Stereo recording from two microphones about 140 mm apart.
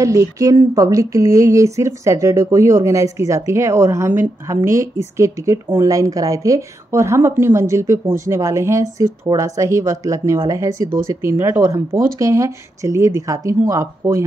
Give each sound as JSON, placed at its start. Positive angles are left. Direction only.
{"t": 0.0, "sound": "a woman's voice", "side_deg": -25}